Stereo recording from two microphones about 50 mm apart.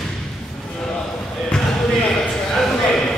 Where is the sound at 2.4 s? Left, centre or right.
Centre.